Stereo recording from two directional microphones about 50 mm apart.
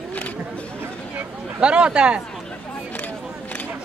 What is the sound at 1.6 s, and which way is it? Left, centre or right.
Speech, right.